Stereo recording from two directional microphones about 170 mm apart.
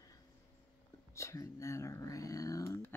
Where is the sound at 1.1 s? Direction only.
20° left (ahead or behind).